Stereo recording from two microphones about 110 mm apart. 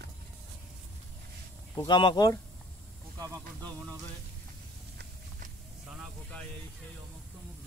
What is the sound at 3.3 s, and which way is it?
Speech, 10° left (ahead or behind).